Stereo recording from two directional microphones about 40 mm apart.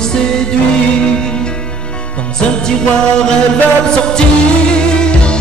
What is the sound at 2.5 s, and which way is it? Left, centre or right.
Music, centre.